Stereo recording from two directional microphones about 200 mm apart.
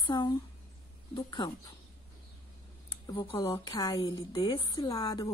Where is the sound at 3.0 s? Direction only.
25° left (ahead or behind).